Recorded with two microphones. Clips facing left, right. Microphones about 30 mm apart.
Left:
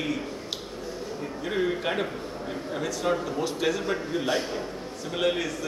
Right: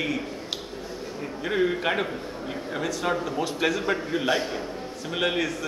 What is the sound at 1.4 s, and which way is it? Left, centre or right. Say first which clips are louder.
A man's voice: right 3 dB; centre.